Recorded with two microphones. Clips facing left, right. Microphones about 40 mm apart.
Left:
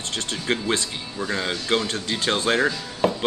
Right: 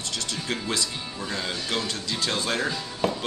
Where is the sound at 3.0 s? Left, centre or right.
Centre.